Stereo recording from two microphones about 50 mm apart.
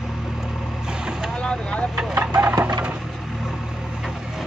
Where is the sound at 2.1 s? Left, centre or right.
Right.